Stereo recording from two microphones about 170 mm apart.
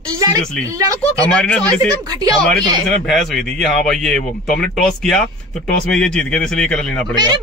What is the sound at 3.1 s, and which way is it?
A man's voice, 5° left (ahead or behind).